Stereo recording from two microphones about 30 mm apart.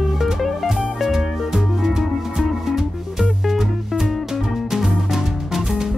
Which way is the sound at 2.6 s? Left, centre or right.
Centre.